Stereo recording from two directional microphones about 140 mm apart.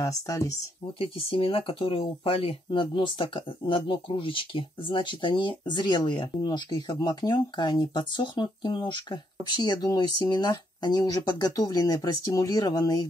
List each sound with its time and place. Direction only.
0.0 s speech: 25° left (ahead or behind)
0.9 s speech: 40° left (ahead or behind)